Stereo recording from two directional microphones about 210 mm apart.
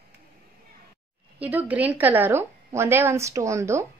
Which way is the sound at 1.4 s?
10° right (ahead or behind).